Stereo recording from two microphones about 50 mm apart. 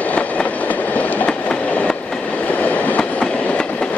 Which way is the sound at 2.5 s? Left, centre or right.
Left.